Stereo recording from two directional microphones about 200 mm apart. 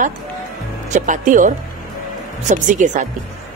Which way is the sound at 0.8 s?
40° right (ahead or behind).